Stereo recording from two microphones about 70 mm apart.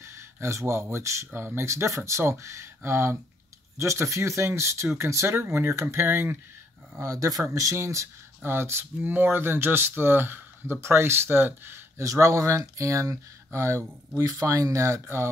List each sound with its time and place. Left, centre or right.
0.0 s speech: right
3.7 s speech: right
7.0 s speech: right
7.4 s speech: right
8.4 s speech: right
12.0 s speech: right